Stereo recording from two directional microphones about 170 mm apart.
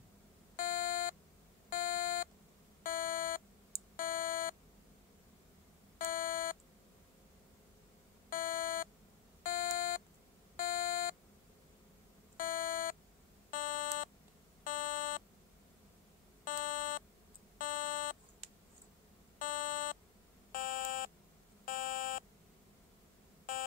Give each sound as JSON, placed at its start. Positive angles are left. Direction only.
{"t": 0.6, "sound": "beep", "side_deg": 55}
{"t": 5.9, "sound": "beep", "side_deg": 55}
{"t": 8.3, "sound": "beep", "side_deg": 55}
{"t": 12.4, "sound": "beep", "side_deg": 55}
{"t": 16.4, "sound": "beep", "side_deg": 55}
{"t": 17.6, "sound": "buzzer", "side_deg": 55}
{"t": 19.3, "sound": "buzzer", "side_deg": 55}
{"t": 20.5, "sound": "beep", "side_deg": 55}